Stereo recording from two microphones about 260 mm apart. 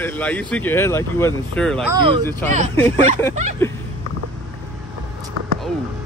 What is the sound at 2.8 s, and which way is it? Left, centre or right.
Speech, centre.